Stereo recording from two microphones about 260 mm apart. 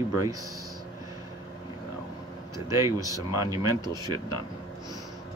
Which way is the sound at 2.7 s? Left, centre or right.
Centre.